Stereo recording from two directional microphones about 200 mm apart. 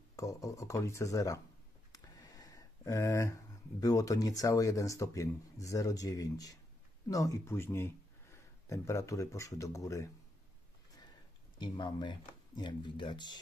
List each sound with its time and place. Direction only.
0.1 s speech: 15° left (ahead or behind)
1.9 s a sound: 20° left (ahead or behind)
3.8 s speech: 15° left (ahead or behind)
11.5 s speech: 25° left (ahead or behind)